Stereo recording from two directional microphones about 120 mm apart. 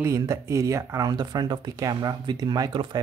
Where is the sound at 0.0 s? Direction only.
25° right (ahead or behind).